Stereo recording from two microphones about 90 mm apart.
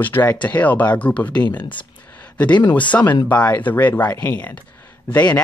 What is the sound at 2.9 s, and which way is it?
Speech, 20° left (ahead or behind).